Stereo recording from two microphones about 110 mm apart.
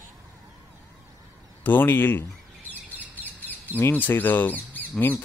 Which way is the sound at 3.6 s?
20° left (ahead or behind).